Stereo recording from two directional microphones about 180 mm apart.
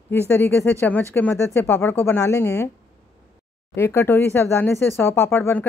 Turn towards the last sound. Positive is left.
turn(degrees=10)  # may be behind; listen again after turning